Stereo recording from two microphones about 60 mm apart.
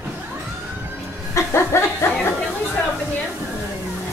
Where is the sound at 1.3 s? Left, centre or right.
Left.